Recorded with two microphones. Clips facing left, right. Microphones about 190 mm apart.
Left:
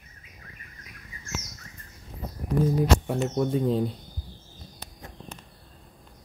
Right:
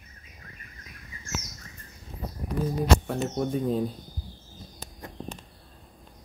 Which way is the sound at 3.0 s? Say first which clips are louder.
Left 2 dB; 25° left (ahead or behind).